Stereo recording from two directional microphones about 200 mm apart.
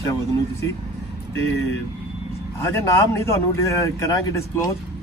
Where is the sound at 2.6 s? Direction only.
15° left (ahead or behind).